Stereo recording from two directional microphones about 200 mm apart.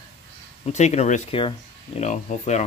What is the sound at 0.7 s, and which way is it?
Cutlery, 35° left (ahead or behind).